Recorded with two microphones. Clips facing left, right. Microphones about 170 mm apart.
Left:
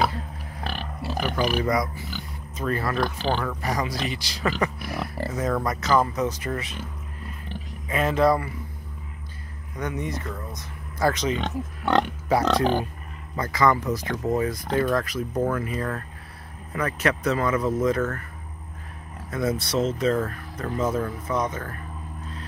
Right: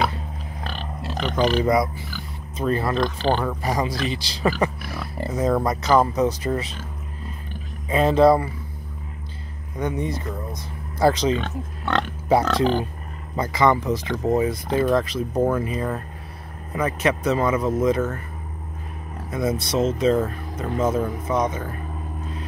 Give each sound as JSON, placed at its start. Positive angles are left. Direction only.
{"t": 0.7, "sound": "pig", "side_deg": 10}
{"t": 1.6, "sound": "speech", "side_deg": -25}
{"t": 4.7, "sound": "speech", "side_deg": 20}
{"t": 5.1, "sound": "speech", "side_deg": -25}
{"t": 7.9, "sound": "speech", "side_deg": -30}
{"t": 9.8, "sound": "speech", "side_deg": -30}
{"t": 11.3, "sound": "speech", "side_deg": 15}
{"t": 13.4, "sound": "speech", "side_deg": -25}
{"t": 19.3, "sound": "speech", "side_deg": -20}